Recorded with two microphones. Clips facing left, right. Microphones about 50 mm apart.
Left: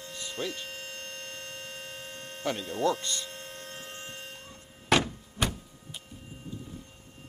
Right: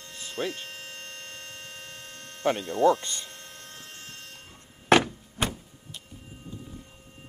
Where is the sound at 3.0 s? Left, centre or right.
Right.